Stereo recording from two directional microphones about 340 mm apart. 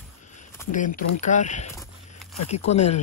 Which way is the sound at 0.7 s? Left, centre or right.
Left.